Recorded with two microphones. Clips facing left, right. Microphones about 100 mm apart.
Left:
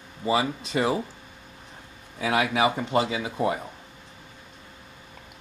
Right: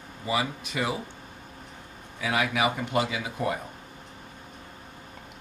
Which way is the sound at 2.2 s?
30° left (ahead or behind).